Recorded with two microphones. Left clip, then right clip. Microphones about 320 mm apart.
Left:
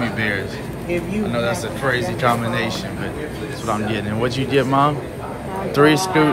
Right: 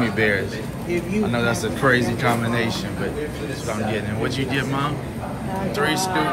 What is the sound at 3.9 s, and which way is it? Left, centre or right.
Speech, centre.